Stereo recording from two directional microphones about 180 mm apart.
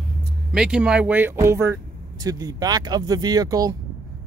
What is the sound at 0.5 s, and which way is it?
Speech, 5° right (ahead or behind).